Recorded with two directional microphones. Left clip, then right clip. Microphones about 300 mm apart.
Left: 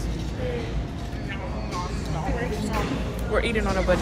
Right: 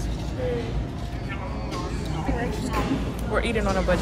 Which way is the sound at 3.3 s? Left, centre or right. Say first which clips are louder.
Even; centre.